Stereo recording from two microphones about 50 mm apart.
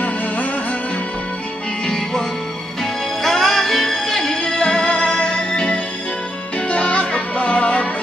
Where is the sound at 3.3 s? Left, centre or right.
Centre.